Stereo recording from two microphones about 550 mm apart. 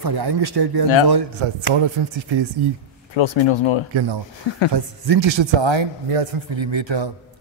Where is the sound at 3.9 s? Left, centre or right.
Right.